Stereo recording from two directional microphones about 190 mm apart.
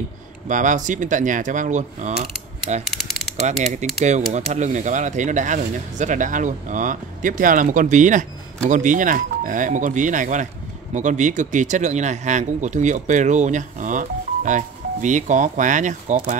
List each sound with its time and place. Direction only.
0.5 s speech: 40° right (ahead or behind)